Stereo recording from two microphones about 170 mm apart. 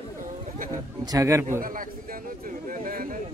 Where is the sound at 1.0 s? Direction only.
20° right (ahead or behind).